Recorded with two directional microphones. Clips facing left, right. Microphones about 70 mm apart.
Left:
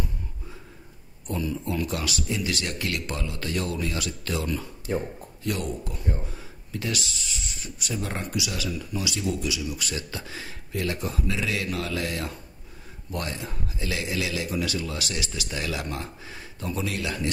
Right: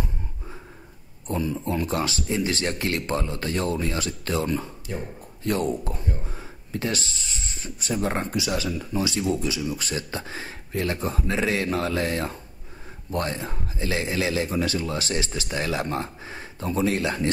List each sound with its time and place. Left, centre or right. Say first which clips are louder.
1.2 s speech: right 3 dB; right
4.9 s speech: left 6 dB; left
5.4 s speech: right 5 dB; right